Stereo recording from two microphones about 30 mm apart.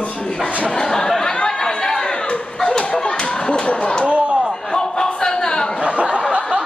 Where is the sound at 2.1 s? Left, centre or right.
Left.